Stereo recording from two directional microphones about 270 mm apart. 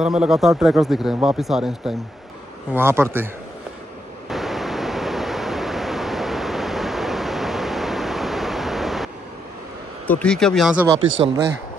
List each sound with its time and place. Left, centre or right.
0.0 s speech: centre
4.3 s waves: centre
10.0 s speech: centre
11.0 s speech: right